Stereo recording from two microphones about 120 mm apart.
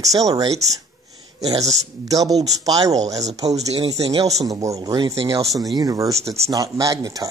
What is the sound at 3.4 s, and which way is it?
Speech, 65° right (ahead or behind).